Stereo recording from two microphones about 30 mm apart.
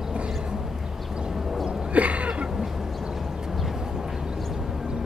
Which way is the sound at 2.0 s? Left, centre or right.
Right.